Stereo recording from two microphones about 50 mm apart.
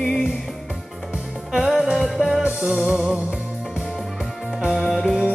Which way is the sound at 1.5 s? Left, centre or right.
Centre.